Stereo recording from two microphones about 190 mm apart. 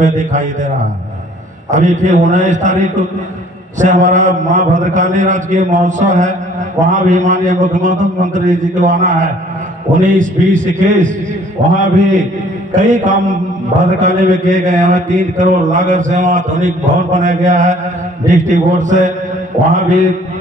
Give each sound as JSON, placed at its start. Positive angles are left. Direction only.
{"t": 0.0, "sound": "a man's voice", "side_deg": -40}
{"t": 1.7, "sound": "a man's voice", "side_deg": -40}